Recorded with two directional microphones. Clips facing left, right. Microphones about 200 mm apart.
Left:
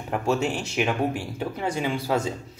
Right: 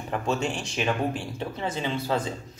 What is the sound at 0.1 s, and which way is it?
Speech, 10° left (ahead or behind).